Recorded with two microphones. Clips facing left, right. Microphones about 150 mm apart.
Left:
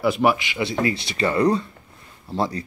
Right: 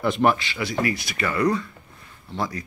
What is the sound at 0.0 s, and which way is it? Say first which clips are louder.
Speech: left 1 dB; 5° left (ahead or behind).